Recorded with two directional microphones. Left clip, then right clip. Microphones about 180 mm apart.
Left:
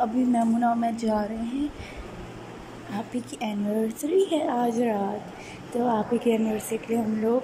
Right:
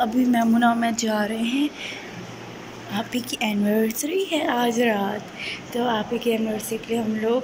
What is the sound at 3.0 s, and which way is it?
A woman's voice, 10° left (ahead or behind).